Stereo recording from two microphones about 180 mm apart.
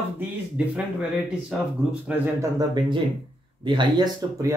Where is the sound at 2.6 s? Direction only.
25° right (ahead or behind).